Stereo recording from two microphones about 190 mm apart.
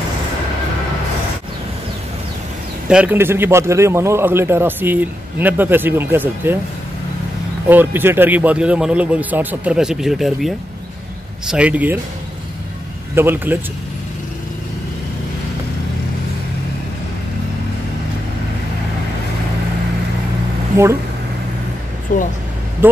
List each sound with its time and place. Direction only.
2.9 s a man's voice: 10° right (ahead or behind)
7.6 s a man's voice: 10° right (ahead or behind)
13.1 s a man's voice: 10° right (ahead or behind)
20.7 s speech: 15° right (ahead or behind)
22.1 s speech: 45° left (ahead or behind)
22.8 s speech: 10° right (ahead or behind)